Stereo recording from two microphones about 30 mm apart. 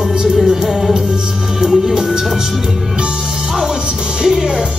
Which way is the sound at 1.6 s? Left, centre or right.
Right.